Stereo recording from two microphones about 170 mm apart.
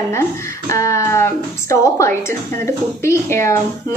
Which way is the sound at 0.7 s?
20° left (ahead or behind).